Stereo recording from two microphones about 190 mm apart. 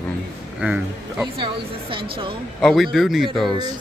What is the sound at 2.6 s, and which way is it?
Speech, centre (ahead or behind).